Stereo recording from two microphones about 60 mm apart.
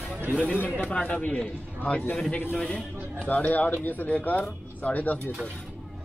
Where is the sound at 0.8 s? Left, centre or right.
Left.